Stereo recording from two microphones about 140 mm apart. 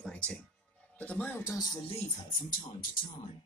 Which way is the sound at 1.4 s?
30° left (ahead or behind).